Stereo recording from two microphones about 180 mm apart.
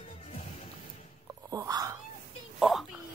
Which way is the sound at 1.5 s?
20° right (ahead or behind).